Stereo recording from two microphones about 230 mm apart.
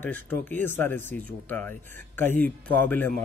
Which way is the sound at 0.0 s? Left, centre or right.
Centre.